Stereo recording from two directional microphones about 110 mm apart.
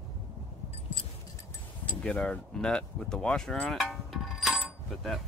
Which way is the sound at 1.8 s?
10° left (ahead or behind).